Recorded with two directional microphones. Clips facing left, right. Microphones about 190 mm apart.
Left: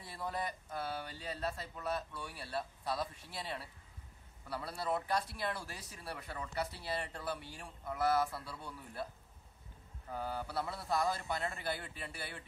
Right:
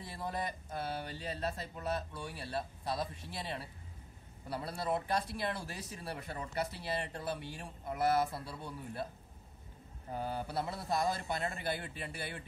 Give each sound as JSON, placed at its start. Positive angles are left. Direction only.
{"t": 0.0, "sound": "speech", "side_deg": -20}
{"t": 10.0, "sound": "speech", "side_deg": -20}